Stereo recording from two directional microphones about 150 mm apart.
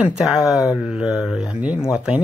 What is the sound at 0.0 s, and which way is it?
Speech, 5° right (ahead or behind).